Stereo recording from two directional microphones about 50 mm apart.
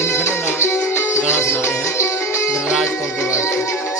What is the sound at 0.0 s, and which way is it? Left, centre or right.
Music, left.